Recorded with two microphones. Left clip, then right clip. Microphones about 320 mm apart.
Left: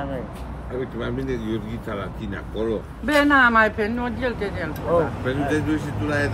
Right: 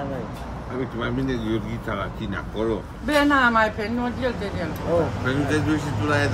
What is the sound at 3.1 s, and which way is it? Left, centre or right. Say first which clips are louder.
Speech: left 2 dB; left.